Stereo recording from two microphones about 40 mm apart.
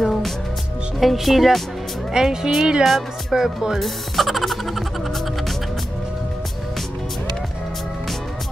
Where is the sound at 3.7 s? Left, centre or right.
Centre.